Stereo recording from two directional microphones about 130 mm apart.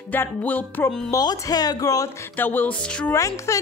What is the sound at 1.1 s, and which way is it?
A woman's voice, 30° left (ahead or behind).